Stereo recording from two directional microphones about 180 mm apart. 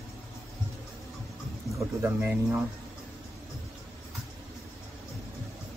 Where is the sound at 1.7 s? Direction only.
15° right (ahead or behind).